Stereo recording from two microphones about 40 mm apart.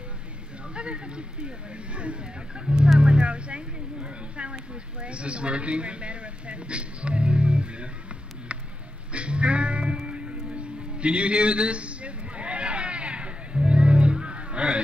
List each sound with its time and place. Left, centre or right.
0.7 s speech: right
3.0 s speech: right
9.1 s music: right